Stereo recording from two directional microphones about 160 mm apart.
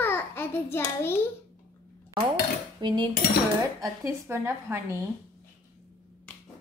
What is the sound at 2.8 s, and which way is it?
Cutlery, 30° right (ahead or behind).